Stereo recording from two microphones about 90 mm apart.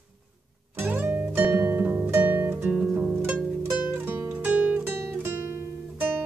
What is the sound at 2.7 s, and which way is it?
Harp, 5° right (ahead or behind).